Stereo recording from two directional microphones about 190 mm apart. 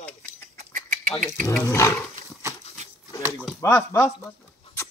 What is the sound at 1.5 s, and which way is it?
Speech, 15° left (ahead or behind).